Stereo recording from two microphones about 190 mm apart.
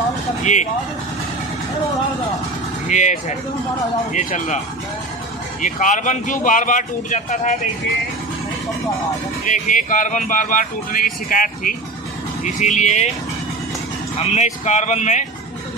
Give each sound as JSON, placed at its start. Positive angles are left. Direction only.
{"t": 0.4, "sound": "speech", "side_deg": 40}
{"t": 2.9, "sound": "speech", "side_deg": 40}
{"t": 5.6, "sound": "speech", "side_deg": 40}
{"t": 9.5, "sound": "speech", "side_deg": 45}
{"t": 14.1, "sound": "speech", "side_deg": 35}